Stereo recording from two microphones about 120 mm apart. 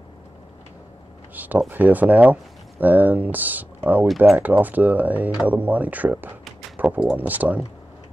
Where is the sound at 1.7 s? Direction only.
15° right (ahead or behind).